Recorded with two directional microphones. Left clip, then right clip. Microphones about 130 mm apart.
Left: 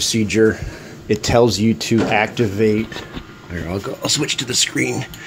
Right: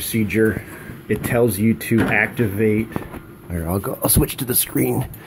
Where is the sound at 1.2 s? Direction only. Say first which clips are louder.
Left 4 dB; 20° left (ahead or behind).